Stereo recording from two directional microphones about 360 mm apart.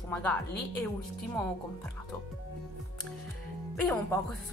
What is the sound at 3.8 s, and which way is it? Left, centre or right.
Speech, centre.